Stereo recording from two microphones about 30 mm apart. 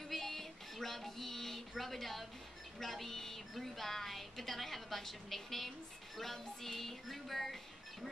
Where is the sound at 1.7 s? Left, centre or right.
Centre.